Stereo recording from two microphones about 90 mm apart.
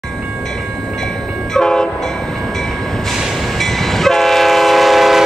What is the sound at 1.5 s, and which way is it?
Train, 5° left (ahead or behind).